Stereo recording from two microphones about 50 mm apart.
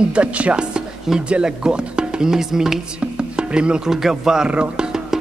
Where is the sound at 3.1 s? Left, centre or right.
Centre.